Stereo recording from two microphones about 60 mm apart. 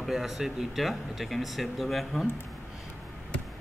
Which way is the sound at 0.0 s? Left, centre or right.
Centre.